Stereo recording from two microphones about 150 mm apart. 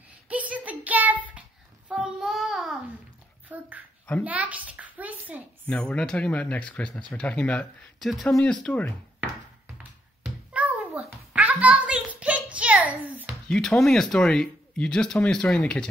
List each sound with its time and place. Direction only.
0.3 s a sound: 10° right (ahead or behind)
1.9 s child singing: 5° right (ahead or behind)
3.4 s dog: 10° right (ahead or behind)
4.2 s a child's voice: 10° right (ahead or behind)
4.6 s hands: 10° right (ahead or behind)
5.7 s speech: 5° left (ahead or behind)
10.5 s a sound: 10° right (ahead or behind)
13.5 s speech: 5° left (ahead or behind)